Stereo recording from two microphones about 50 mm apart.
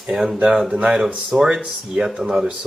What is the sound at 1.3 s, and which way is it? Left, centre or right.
Speech, centre.